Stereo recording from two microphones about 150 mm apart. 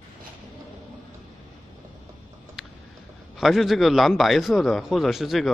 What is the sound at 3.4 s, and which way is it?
A man's voice, centre (ahead or behind).